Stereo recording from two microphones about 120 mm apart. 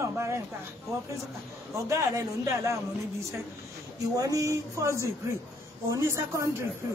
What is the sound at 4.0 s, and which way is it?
Speech, 30° right (ahead or behind).